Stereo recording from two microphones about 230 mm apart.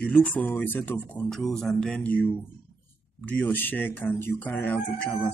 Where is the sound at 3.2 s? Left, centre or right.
Centre.